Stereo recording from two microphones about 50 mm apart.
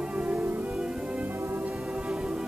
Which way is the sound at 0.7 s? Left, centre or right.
Centre.